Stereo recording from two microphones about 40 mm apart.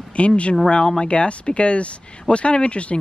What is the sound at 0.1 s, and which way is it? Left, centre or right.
Speech, left.